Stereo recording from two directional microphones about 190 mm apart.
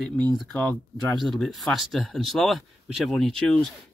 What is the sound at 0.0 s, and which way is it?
Speech, 5° left (ahead or behind).